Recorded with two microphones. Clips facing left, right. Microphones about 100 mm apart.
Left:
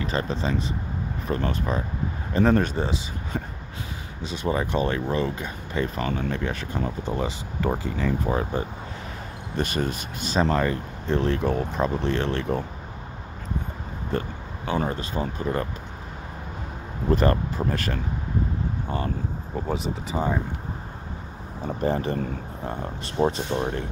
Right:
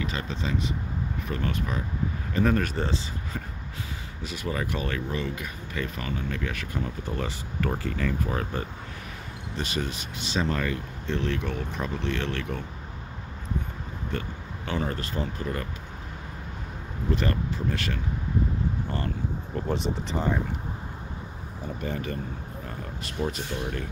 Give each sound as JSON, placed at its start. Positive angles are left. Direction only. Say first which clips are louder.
{"t": 0.0, "sound": "speech", "louder": "left 5 dB", "side_deg": 35}
{"t": 2.7, "sound": "speech", "louder": "left 2 dB", "side_deg": 15}
{"t": 9.6, "sound": "speech", "louder": "left 5 dB", "side_deg": 50}
{"t": 14.1, "sound": "speech", "louder": "left 6 dB", "side_deg": 35}
{"t": 14.9, "sound": "speech", "louder": "left 3 dB", "side_deg": 20}
{"t": 17.1, "sound": "speech", "louder": "left 6 dB", "side_deg": 40}
{"t": 19.7, "sound": "speech", "louder": "even", "side_deg": 5}
{"t": 21.8, "sound": "speech", "louder": "left 8 dB", "side_deg": 30}